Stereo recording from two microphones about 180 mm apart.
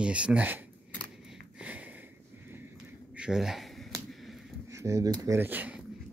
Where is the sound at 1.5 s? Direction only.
5° right (ahead or behind).